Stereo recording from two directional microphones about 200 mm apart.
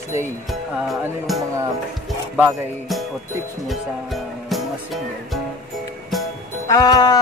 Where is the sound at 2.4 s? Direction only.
Centre (ahead or behind).